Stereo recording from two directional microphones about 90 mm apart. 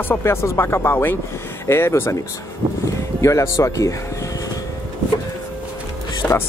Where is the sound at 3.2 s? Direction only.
35° left (ahead or behind).